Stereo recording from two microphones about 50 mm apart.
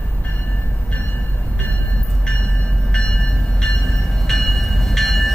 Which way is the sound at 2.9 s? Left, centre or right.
Centre.